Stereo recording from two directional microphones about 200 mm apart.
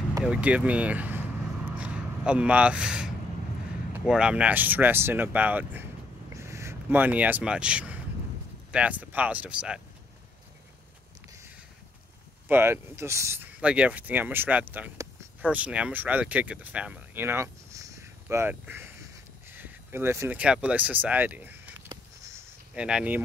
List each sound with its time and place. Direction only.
0.2 s speech: 5° right (ahead or behind)
12.4 s speech: 10° right (ahead or behind)
21.8 s a sound: 15° right (ahead or behind)
22.8 s speech: 5° right (ahead or behind)